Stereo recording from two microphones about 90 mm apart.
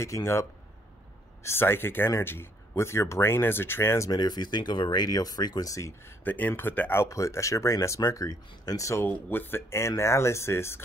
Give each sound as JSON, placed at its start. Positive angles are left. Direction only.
{"t": 0.0, "sound": "speech", "side_deg": 30}
{"t": 4.1, "sound": "speech", "side_deg": 50}
{"t": 6.2, "sound": "speech", "side_deg": 20}
{"t": 7.0, "sound": "speech", "side_deg": 35}
{"t": 9.0, "sound": "speech", "side_deg": 25}